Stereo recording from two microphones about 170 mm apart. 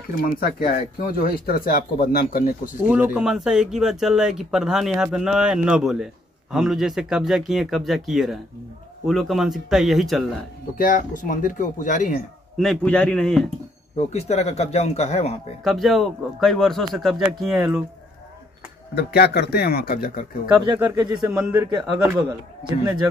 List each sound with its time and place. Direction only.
0.2 s speech: 55° left (ahead or behind)
2.9 s speech: 5° right (ahead or behind)
10.8 s speech: 50° left (ahead or behind)
12.5 s speech: 5° left (ahead or behind)
13.9 s speech: 40° left (ahead or behind)
15.6 s speech: centre (ahead or behind)
18.9 s speech: 70° left (ahead or behind)
20.6 s a man's voice: 25° right (ahead or behind)
21.2 s speech: 5° right (ahead or behind)
21.6 s a man's voice: 25° right (ahead or behind)